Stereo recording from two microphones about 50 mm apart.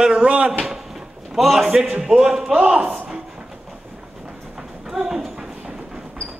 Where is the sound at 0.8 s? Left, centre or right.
Centre.